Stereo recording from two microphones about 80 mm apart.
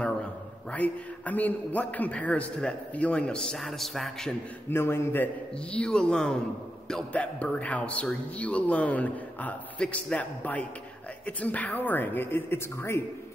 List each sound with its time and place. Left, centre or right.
0.7 s a man's voice: centre
4.6 s a man's voice: left